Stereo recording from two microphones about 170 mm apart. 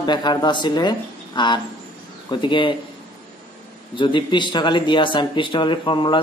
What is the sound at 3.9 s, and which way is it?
Speech, 25° left (ahead or behind).